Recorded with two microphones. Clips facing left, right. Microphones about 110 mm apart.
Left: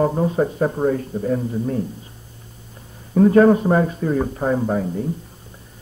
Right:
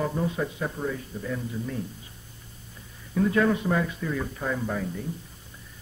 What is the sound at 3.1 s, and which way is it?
Speech, 45° left (ahead or behind).